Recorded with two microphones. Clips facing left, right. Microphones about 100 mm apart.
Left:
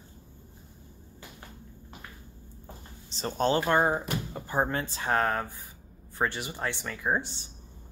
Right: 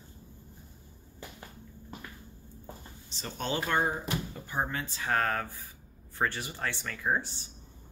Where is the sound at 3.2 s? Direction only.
40° left (ahead or behind); by 7.3 s 20° left (ahead or behind).